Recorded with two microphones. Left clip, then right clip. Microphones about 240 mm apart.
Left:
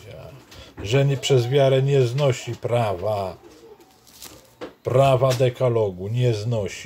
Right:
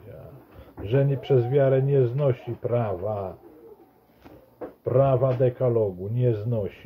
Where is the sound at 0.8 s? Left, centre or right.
Centre.